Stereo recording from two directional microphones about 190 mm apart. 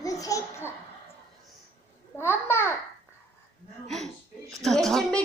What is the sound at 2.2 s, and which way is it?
Speech, 10° left (ahead or behind).